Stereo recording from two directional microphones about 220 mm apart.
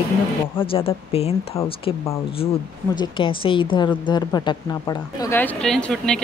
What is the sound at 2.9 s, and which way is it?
Speech, 20° left (ahead or behind).